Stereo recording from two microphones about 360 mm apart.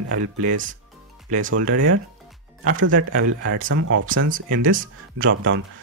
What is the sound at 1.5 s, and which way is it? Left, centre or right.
Speech, right.